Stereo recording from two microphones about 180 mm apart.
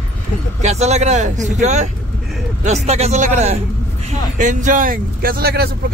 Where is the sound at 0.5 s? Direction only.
40° right (ahead or behind).